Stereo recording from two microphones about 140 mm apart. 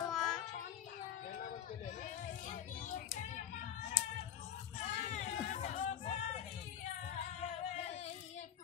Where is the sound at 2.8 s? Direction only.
60° left (ahead or behind).